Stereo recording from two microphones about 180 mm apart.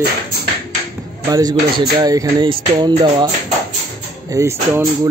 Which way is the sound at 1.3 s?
20° right (ahead or behind).